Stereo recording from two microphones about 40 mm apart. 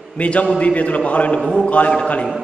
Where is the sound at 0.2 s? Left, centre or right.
Left.